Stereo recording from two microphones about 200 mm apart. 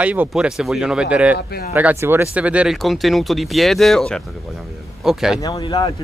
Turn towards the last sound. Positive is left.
turn(degrees=25)  # may be behind; listen again after turning